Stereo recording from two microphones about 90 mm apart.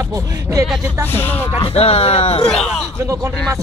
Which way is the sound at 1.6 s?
90° left.